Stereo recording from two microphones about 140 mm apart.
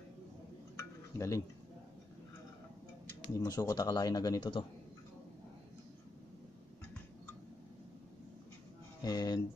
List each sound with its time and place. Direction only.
0.7 s a sound: 20° left (ahead or behind)
3.3 s speech: 25° left (ahead or behind)
9.0 s speech: 25° left (ahead or behind)